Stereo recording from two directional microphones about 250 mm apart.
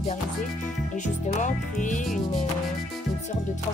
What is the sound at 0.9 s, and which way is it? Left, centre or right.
Speech, left.